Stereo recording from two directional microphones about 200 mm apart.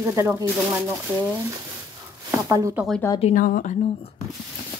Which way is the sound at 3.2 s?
40° left (ahead or behind).